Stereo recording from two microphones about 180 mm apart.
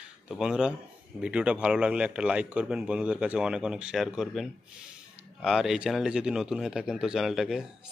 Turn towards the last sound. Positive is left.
turn(degrees=0)  # may be behind; listen again after turning